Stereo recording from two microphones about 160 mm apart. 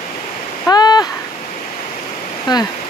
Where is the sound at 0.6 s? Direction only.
25° left (ahead or behind).